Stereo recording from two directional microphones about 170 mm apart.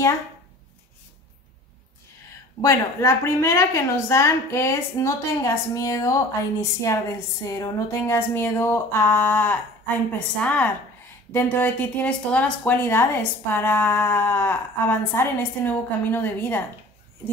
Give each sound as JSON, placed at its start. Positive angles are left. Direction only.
{"t": 2.6, "sound": "a woman's voice", "side_deg": 15}